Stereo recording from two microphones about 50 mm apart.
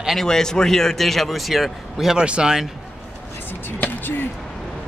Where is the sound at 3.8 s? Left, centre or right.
Left.